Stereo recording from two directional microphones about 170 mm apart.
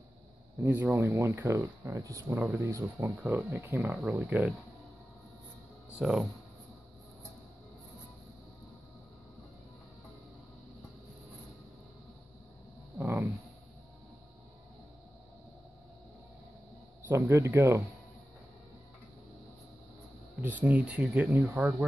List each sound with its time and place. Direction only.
0.7 s speech: 10° right (ahead or behind)
5.9 s speech: 5° right (ahead or behind)
12.9 s a sound: 15° right (ahead or behind)
17.1 s speech: 15° right (ahead or behind)
20.3 s speech: 10° right (ahead or behind)